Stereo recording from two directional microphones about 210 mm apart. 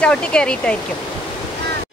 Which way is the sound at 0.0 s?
5° left (ahead or behind).